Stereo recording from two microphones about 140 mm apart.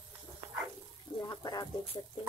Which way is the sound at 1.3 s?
30° left (ahead or behind).